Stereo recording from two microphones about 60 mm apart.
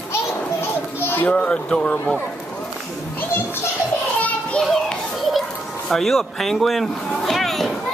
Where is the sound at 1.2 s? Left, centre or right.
Left.